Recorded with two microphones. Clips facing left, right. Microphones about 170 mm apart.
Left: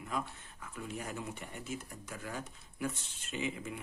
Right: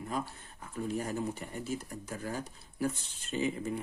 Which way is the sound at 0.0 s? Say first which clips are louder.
Right 2 dB; 35° right (ahead or behind).